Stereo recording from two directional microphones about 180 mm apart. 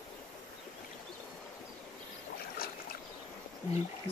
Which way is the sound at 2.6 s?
55° left (ahead or behind).